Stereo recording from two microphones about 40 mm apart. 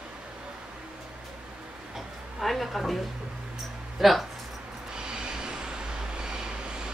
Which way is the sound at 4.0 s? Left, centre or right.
Centre.